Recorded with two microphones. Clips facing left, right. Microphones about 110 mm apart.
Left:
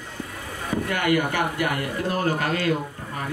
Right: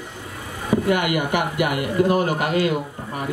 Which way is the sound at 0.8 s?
15° right (ahead or behind).